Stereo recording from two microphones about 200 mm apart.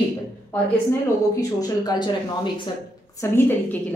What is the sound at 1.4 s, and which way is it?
Speech, 20° left (ahead or behind).